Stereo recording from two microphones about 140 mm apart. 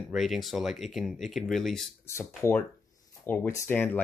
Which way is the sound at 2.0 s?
20° left (ahead or behind).